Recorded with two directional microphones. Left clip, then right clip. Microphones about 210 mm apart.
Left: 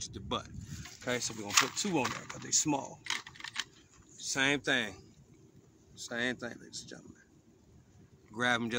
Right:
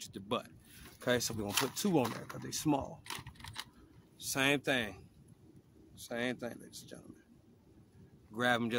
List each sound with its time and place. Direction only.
0.0 s speech: 30° right (ahead or behind)
1.0 s speech: 50° right (ahead or behind)
2.0 s speech: 20° right (ahead or behind)
2.5 s speech: 35° right (ahead or behind)
3.0 s typing: 20° right (ahead or behind)
4.2 s speech: 35° right (ahead or behind)
8.4 s speech: 25° right (ahead or behind)